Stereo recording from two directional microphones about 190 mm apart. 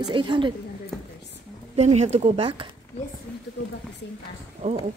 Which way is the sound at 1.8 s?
35° right (ahead or behind).